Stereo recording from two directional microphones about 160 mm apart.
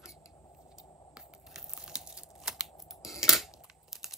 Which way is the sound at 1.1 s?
5° right (ahead or behind).